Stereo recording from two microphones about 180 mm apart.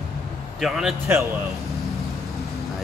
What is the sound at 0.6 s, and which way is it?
Speech, centre (ahead or behind).